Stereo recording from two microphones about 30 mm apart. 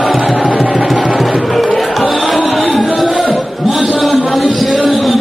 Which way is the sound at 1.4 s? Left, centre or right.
Centre.